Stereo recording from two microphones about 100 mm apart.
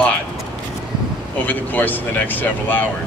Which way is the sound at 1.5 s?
20° left (ahead or behind).